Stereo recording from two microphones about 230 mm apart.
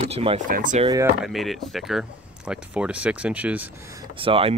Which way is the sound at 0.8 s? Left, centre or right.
Centre.